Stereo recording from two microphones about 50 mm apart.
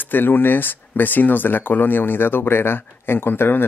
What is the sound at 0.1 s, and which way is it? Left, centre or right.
Speech, left.